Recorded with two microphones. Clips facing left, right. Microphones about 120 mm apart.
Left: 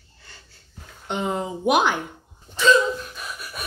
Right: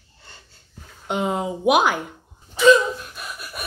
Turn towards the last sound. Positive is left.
turn(degrees=-5)  # may be behind; listen again after turning